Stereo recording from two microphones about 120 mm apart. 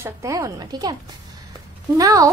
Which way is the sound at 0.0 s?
25° right (ahead or behind).